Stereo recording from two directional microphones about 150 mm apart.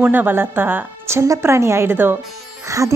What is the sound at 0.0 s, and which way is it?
Speech, 10° right (ahead or behind).